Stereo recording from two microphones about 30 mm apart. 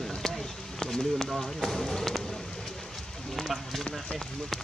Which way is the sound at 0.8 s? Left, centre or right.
Centre.